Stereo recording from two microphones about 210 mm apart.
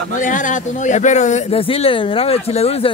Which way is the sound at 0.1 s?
40° left (ahead or behind).